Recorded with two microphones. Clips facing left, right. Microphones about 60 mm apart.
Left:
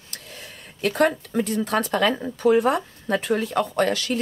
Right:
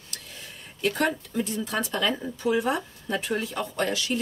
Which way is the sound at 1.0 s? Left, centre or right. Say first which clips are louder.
Left 9 dB; left.